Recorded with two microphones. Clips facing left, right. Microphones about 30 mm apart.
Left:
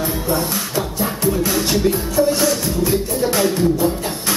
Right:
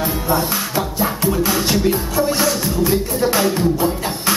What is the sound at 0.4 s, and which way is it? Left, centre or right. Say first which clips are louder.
Music: right 1 dB; right.